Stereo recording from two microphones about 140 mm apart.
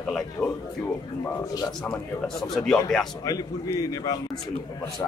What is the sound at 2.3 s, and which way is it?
Speech, centre (ahead or behind).